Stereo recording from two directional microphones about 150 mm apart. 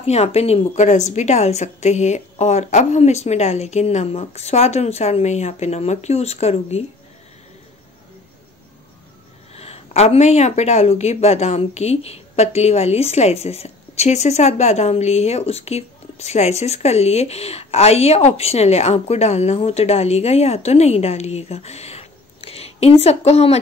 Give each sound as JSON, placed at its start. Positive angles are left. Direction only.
{"t": 0.0, "sound": "speech", "side_deg": 45}
{"t": 9.6, "sound": "speech", "side_deg": 45}